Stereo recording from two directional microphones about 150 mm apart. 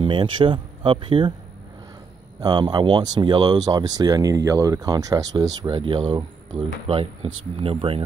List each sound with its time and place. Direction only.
0.0 s speech: 35° right (ahead or behind)
2.4 s speech: 25° right (ahead or behind)